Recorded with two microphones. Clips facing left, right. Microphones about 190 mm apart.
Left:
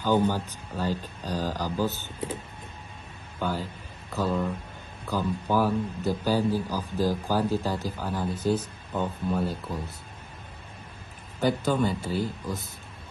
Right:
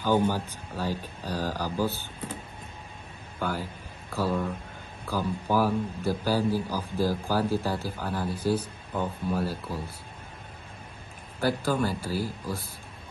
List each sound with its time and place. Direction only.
0.0 s a man's voice: 15° right (ahead or behind)
4.1 s a man's voice: 10° right (ahead or behind)
7.8 s speech: 15° left (ahead or behind)
8.4 s a man's voice: 10° right (ahead or behind)
11.4 s a man's voice: 5° right (ahead or behind)